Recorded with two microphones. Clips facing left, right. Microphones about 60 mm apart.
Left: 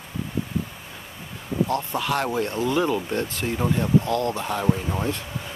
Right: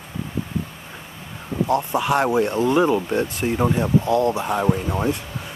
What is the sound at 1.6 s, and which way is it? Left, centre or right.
Speech, centre.